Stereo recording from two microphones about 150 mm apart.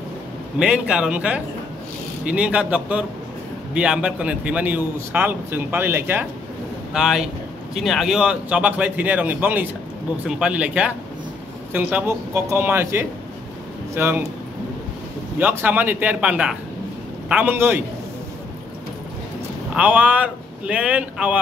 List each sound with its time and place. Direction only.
0.6 s a man's voice: 5° right (ahead or behind)
6.9 s a man's voice: centre (ahead or behind)
15.3 s a man's voice: 10° right (ahead or behind)
19.7 s a man's voice: 10° right (ahead or behind)